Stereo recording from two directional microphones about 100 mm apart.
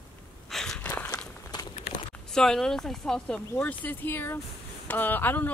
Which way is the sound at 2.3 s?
5° left (ahead or behind).